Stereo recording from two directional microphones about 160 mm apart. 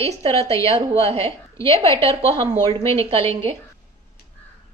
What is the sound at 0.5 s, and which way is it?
Speech, 20° left (ahead or behind).